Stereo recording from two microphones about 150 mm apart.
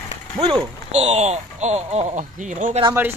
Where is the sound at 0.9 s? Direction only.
45° right (ahead or behind).